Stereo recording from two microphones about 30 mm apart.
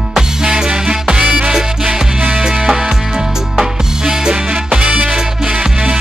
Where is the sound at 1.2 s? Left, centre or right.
Right.